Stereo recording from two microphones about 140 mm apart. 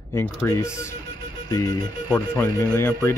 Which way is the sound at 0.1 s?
15° left (ahead or behind).